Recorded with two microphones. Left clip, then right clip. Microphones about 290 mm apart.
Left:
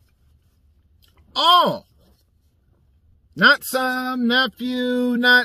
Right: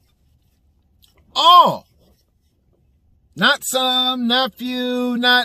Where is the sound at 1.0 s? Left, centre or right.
Right.